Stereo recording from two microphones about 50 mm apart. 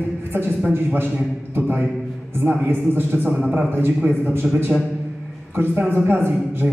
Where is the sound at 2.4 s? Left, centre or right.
Right.